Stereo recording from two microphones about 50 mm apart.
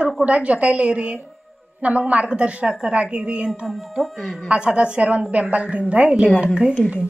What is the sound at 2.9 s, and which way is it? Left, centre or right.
Speech, right.